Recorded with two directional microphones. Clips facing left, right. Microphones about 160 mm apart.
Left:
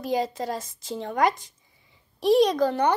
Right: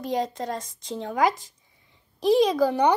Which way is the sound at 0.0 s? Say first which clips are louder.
Left 1 dB; centre (ahead or behind).